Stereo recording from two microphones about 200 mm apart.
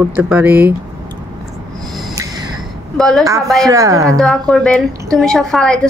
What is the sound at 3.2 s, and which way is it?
Speech, 15° right (ahead or behind).